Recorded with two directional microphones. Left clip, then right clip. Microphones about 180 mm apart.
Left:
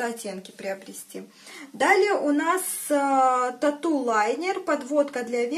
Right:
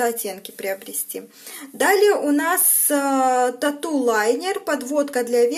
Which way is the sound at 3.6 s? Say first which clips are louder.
Right 3 dB; 50° right (ahead or behind).